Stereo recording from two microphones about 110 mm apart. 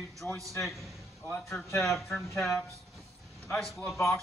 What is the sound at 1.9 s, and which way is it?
A man's voice, centre (ahead or behind).